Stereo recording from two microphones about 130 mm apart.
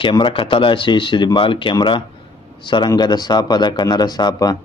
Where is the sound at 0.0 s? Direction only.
40° left (ahead or behind).